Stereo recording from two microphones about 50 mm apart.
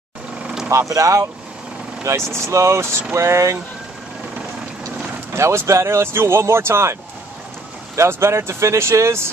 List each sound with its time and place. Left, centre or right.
0.7 s speech: right
2.0 s speech: right
3.2 s speech: right
5.3 s speech: right